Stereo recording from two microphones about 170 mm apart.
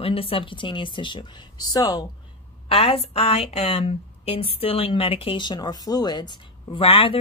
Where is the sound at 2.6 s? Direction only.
35° left (ahead or behind).